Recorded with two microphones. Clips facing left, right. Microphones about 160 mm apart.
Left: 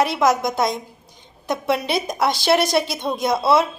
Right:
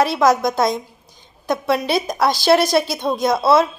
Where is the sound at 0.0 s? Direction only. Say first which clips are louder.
Right 3 dB; 20° left (ahead or behind).